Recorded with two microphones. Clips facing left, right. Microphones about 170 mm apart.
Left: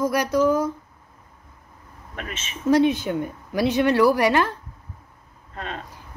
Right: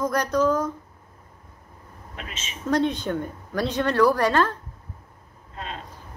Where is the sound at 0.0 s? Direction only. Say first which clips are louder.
Left 2 dB; 10° left (ahead or behind).